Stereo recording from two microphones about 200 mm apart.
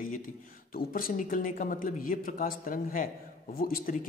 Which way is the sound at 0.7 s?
45° left (ahead or behind).